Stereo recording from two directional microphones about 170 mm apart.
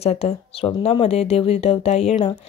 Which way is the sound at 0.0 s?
35° left (ahead or behind).